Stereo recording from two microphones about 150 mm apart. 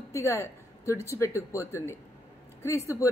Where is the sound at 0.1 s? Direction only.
20° left (ahead or behind).